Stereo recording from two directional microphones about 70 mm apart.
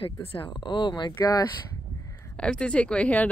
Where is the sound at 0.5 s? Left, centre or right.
Left.